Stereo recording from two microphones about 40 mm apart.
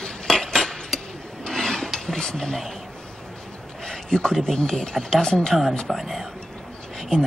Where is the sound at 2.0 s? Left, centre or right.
Centre.